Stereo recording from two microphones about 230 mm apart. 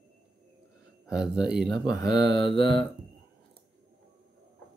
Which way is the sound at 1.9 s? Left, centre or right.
Centre.